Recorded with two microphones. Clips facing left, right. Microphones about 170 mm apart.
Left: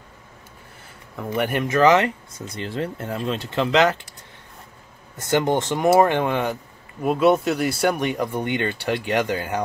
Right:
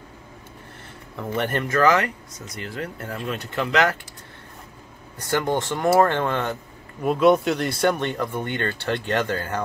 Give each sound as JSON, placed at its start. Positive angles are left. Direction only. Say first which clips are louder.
{"t": 1.3, "sound": "speech", "louder": "left 2 dB", "side_deg": 15}
{"t": 5.1, "sound": "speech", "louder": "left 3 dB", "side_deg": 20}